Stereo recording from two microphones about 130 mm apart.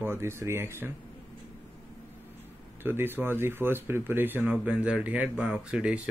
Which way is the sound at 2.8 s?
15° right (ahead or behind).